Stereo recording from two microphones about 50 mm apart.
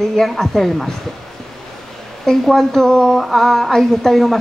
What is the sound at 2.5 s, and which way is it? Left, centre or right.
Speech, centre.